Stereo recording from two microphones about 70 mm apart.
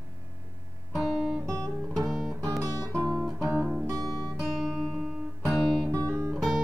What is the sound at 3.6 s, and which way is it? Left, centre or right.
Guitar, centre.